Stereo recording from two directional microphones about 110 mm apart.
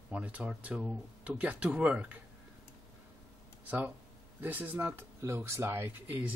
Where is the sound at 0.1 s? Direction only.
15° right (ahead or behind).